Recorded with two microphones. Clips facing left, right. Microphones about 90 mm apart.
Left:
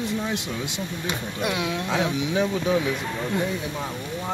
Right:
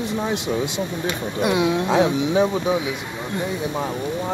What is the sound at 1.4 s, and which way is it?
Speech, 20° right (ahead or behind).